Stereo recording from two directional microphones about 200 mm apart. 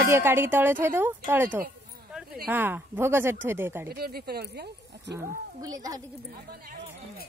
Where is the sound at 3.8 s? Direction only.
50° right (ahead or behind).